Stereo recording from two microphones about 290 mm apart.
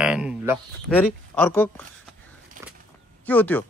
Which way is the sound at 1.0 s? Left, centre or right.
Centre.